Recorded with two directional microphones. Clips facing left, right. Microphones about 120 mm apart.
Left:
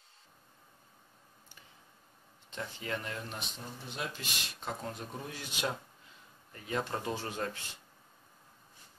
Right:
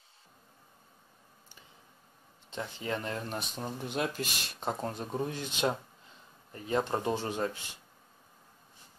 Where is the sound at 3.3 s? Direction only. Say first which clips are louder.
Right 6 dB; 45° right (ahead or behind).